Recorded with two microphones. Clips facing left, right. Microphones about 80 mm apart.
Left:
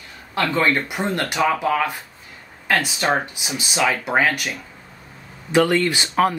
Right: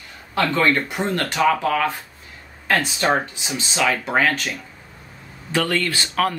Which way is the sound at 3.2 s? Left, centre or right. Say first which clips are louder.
Even; centre.